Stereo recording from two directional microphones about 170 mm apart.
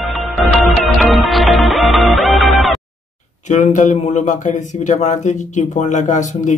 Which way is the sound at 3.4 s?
45° left (ahead or behind).